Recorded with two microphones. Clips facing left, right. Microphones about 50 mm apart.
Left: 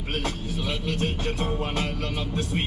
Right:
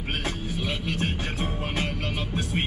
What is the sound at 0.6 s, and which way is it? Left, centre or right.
Speech, centre.